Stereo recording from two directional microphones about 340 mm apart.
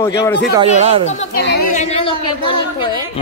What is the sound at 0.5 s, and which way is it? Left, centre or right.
Speech, centre.